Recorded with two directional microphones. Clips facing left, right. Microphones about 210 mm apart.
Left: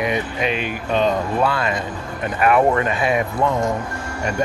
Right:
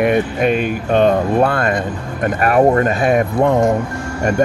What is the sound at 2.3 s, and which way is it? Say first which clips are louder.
Speech: right 3 dB; 40° right (ahead or behind).